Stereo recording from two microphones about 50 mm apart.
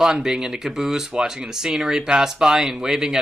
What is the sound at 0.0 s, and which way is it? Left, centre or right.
Speech, centre.